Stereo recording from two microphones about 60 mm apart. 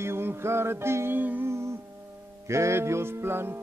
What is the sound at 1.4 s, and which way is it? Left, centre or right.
Music, right.